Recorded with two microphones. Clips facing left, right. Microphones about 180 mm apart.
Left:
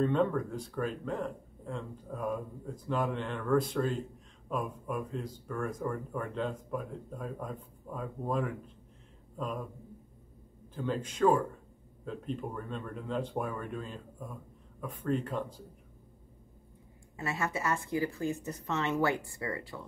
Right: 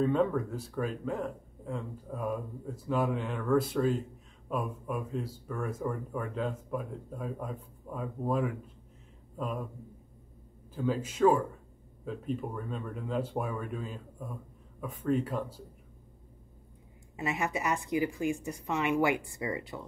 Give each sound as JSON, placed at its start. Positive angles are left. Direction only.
{"t": 0.0, "sound": "speech", "side_deg": -5}
{"t": 10.7, "sound": "a woman's voice", "side_deg": -5}
{"t": 17.2, "sound": "a woman's voice", "side_deg": -15}